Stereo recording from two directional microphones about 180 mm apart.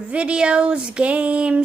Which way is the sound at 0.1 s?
5° right (ahead or behind).